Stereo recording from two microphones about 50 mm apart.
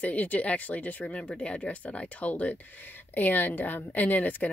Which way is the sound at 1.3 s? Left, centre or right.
Left.